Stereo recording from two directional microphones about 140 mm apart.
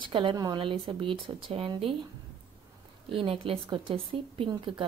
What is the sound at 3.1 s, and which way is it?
A woman's voice, 40° right (ahead or behind).